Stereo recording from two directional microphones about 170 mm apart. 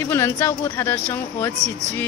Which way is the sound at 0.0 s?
15° left (ahead or behind).